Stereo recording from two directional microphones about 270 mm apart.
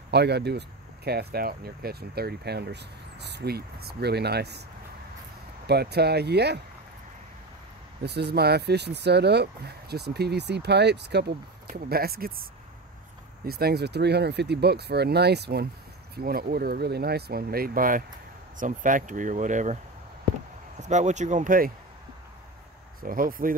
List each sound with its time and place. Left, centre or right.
0.1 s speech: right
5.7 s speech: right
8.0 s speech: right
13.5 s speech: right
20.8 s speech: right
23.0 s speech: right